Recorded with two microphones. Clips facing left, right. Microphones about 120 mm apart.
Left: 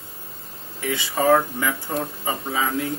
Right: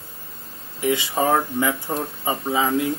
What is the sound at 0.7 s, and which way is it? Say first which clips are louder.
Speech: right 3 dB; 20° right (ahead or behind).